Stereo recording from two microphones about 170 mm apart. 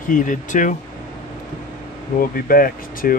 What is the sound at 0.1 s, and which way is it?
Speech, 50° left (ahead or behind).